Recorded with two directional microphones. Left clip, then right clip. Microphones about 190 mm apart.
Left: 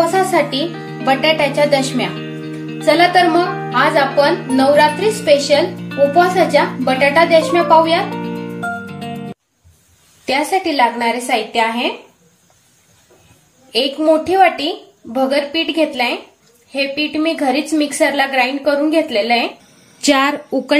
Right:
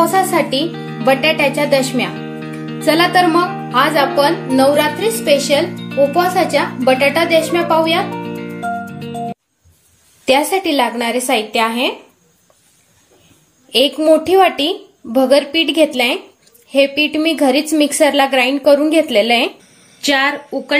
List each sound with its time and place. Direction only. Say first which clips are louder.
0.0 s music: even; 45° right (ahead or behind)
0.7 s music: right 1 dB; 5° left (ahead or behind)
1.0 s speech: right 1 dB; 45° right (ahead or behind)
8.1 s music: even; 5° left (ahead or behind)
10.2 s speech: right 2 dB; 45° right (ahead or behind)
13.7 s speech: right 3 dB; 50° right (ahead or behind)
20.1 s a woman's voice: left 1 dB; 50° left (ahead or behind)